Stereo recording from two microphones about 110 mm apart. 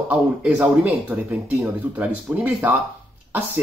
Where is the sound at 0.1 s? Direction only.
10° right (ahead or behind).